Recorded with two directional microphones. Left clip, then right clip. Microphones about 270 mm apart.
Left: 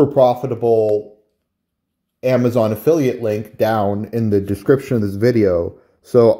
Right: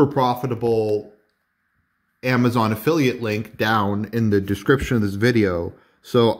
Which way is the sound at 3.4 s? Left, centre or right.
Centre.